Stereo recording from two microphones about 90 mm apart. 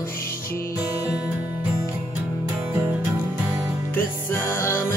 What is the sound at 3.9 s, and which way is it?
Music, 25° left (ahead or behind).